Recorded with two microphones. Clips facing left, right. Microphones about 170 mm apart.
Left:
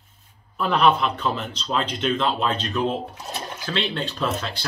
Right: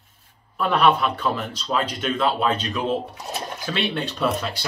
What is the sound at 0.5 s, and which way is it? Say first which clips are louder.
Speech: even; 5° right (ahead or behind).